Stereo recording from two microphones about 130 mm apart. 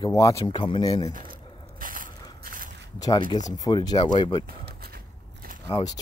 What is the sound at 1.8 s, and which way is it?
Biting, 90° right.